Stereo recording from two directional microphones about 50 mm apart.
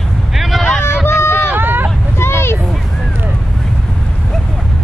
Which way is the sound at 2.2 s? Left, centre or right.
Left.